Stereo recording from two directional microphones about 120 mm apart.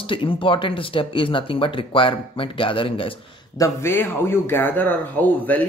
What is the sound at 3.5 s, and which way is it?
A man's voice, 25° left (ahead or behind).